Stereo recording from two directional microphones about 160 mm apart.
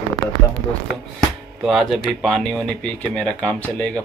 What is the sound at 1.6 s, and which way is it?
Speech, centre (ahead or behind).